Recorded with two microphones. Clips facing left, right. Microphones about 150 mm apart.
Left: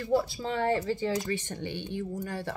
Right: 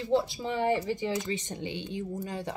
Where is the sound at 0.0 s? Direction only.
20° right (ahead or behind).